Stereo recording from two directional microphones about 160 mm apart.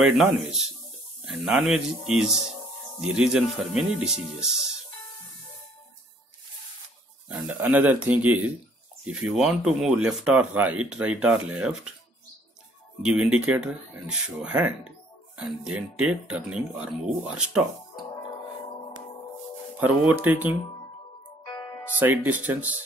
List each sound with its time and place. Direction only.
0.2 s speech: 5° right (ahead or behind)
7.2 s speech: 10° right (ahead or behind)
13.0 s speech: 5° right (ahead or behind)
19.8 s speech: 10° right (ahead or behind)
21.5 s music: 20° left (ahead or behind)
21.9 s speech: 10° right (ahead or behind)